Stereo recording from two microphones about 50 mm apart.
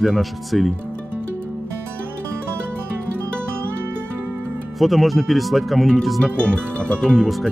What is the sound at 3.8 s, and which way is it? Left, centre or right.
Music, right.